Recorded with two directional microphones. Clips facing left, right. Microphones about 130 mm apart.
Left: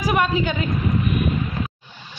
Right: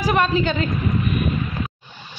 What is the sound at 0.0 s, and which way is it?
Speech, 10° left (ahead or behind).